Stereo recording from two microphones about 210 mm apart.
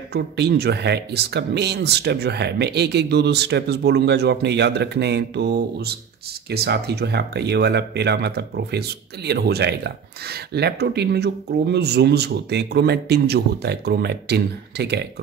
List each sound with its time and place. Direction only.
0.1 s speech: 50° right (ahead or behind)